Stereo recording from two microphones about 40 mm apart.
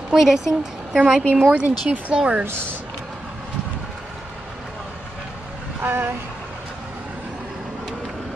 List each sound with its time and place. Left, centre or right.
0.1 s a woman's voice: centre
1.5 s speech: right
5.8 s speech: right